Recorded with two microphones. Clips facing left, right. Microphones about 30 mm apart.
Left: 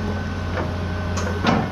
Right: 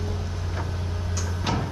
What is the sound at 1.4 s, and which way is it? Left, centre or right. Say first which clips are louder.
Music: left 8 dB; centre.